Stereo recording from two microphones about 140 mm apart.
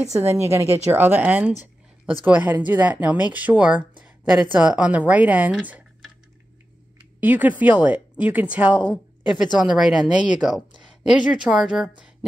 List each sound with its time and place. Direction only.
0.0 s a woman's voice: 20° right (ahead or behind)
7.2 s speech: 10° right (ahead or behind)